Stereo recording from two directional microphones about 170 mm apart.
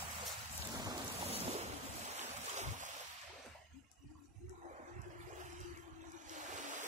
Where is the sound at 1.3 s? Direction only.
35° right (ahead or behind).